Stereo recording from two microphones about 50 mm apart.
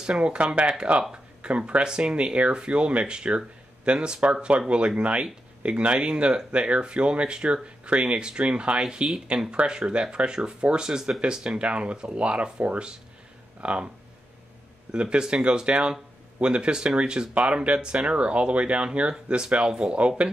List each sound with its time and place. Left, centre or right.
0.0 s speech: centre
14.9 s speech: centre